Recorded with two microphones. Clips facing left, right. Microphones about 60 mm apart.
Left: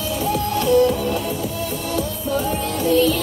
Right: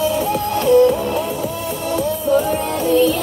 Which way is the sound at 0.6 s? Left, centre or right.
Right.